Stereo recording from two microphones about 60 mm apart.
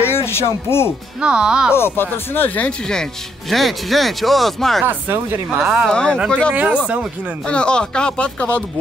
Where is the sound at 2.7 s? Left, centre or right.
Centre.